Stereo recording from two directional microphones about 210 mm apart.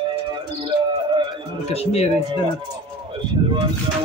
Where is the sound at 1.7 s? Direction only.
30° left (ahead or behind).